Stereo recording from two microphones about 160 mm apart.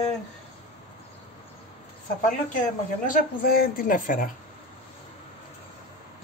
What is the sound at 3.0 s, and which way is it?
Speech, 65° left (ahead or behind).